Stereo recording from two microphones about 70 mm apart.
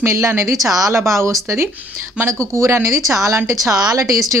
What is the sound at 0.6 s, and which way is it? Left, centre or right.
Speech, right.